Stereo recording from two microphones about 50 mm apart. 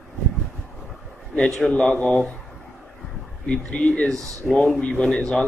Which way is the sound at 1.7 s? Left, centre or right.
Left.